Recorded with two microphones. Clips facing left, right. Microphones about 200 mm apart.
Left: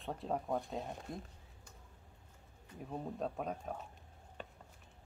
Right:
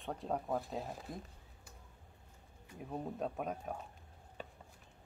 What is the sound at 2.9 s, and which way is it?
Speech, 5° right (ahead or behind).